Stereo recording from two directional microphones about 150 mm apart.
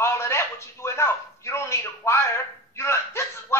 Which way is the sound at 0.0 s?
20° left (ahead or behind).